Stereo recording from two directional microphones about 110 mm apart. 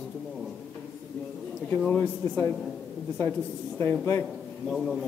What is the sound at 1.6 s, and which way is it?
Speech, 15° left (ahead or behind).